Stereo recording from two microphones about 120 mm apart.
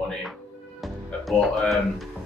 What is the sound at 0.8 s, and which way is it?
Music, centre (ahead or behind).